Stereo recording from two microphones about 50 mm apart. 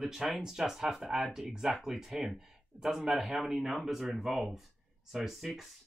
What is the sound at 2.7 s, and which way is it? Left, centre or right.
Speech, right.